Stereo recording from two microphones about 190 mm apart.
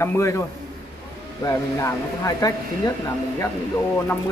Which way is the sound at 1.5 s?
15° left (ahead or behind).